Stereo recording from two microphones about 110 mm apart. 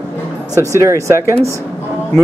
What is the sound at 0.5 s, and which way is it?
Speech, 30° right (ahead or behind).